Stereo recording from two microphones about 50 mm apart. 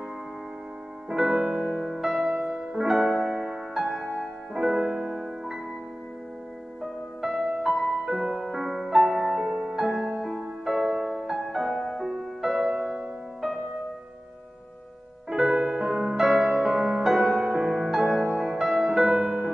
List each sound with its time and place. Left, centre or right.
1.0 s music: centre
6.8 s music: centre
15.2 s music: centre
16.2 s music: centre
16.6 s music: centre
17.0 s music: centre